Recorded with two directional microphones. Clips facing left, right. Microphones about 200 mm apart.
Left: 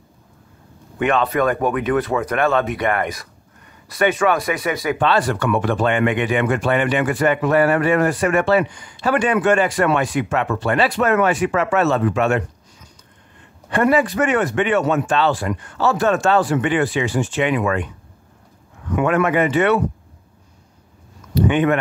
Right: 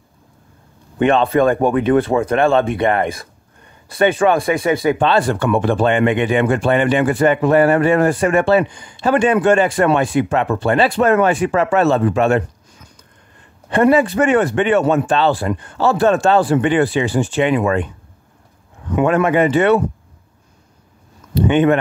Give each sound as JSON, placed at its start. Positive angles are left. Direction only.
{"t": 0.9, "sound": "speech", "side_deg": -30}
{"t": 13.7, "sound": "speech", "side_deg": -25}
{"t": 18.9, "sound": "speech", "side_deg": -25}
{"t": 21.4, "sound": "speech", "side_deg": -25}